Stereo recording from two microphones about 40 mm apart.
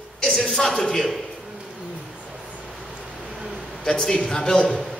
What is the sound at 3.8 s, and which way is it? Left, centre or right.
Speech, centre.